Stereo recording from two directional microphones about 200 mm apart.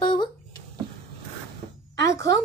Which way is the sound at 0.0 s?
20° left (ahead or behind).